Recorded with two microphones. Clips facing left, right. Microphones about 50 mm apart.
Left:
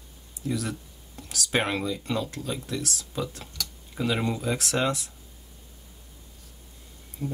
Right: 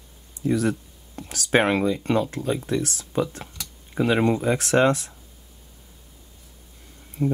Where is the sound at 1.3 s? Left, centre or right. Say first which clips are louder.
Right 7 dB; right.